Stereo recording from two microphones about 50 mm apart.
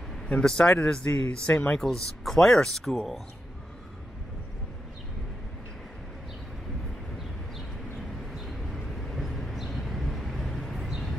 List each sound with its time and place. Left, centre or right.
0.3 s speech: centre
8.3 s vehicle: centre